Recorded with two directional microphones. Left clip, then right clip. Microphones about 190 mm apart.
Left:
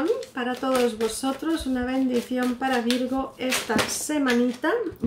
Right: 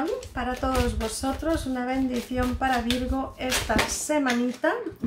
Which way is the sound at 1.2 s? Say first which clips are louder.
Even; 15° right (ahead or behind).